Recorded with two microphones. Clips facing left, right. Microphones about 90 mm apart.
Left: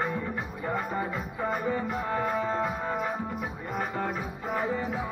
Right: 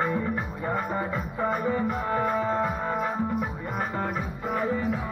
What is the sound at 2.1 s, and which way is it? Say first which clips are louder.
Music: right 2 dB; 35° right (ahead or behind).